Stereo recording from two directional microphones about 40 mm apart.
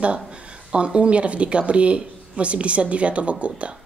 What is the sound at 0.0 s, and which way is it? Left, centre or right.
Speech, right.